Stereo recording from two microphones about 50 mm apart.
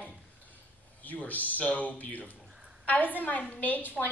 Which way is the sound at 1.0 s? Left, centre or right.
Left.